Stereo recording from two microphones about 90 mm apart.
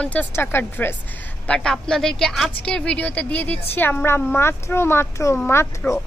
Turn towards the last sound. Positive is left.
turn(degrees=30)  # may be behind; listen again after turning